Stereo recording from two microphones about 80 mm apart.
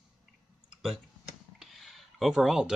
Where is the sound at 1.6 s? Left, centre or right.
Centre.